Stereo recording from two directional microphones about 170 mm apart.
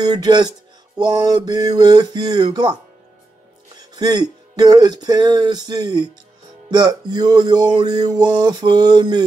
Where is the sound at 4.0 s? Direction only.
25° right (ahead or behind).